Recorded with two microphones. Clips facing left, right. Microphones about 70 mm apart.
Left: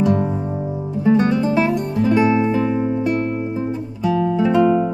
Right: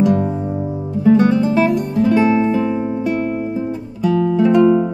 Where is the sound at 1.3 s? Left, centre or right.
Centre.